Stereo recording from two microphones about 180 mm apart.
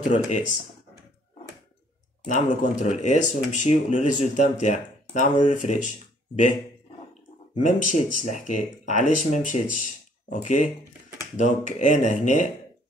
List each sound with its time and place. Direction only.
0.0 s speech: 45° left (ahead or behind)
2.2 s speech: 40° left (ahead or behind)
7.6 s speech: 45° left (ahead or behind)